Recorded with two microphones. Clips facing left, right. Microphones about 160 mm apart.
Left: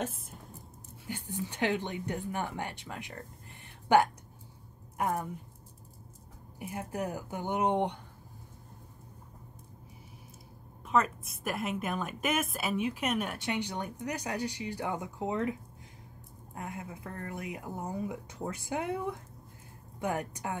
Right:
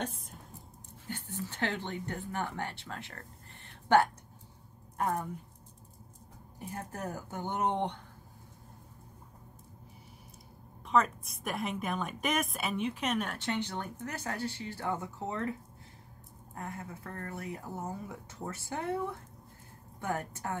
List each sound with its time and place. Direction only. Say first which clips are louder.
0.0 s a sound: left 2 dB; 5° left (ahead or behind)
1.0 s a woman's voice: left 2 dB; 15° left (ahead or behind)
3.6 s a sound: left 1 dB; 15° left (ahead or behind)
4.9 s a woman's voice: left 1 dB; 10° left (ahead or behind)
6.6 s a woman's voice: left 4 dB; 10° left (ahead or behind)
10.9 s a woman's voice: even; 5° left (ahead or behind)
16.5 s a woman's voice: left 1 dB; 15° left (ahead or behind)
20.0 s a woman's voice: left 2 dB; 15° left (ahead or behind)